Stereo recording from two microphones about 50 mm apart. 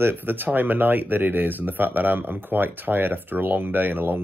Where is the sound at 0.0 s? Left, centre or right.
Right.